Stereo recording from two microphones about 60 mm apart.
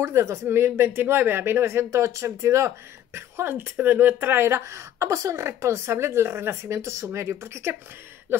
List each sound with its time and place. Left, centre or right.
0.0 s a woman's voice: right
3.5 s a woman's voice: right
8.3 s a sound: right